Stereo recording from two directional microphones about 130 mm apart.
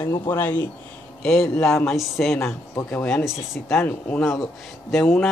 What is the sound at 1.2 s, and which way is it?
Speech, 5° left (ahead or behind).